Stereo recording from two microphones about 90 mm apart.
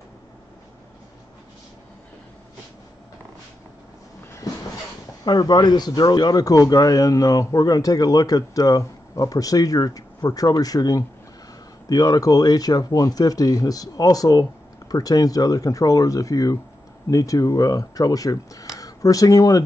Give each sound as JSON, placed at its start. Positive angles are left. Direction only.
{"t": 5.2, "sound": "speech", "side_deg": 55}